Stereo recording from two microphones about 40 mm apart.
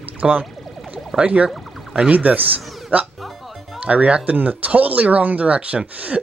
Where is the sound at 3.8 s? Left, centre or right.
Right.